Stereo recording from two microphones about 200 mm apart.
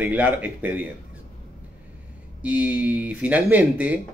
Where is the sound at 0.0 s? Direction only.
10° right (ahead or behind).